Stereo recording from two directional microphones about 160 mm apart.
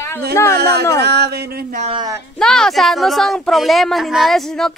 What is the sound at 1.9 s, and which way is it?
Speech, 25° right (ahead or behind).